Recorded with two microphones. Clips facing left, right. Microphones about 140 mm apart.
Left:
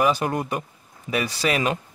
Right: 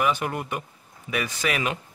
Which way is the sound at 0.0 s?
35° left (ahead or behind).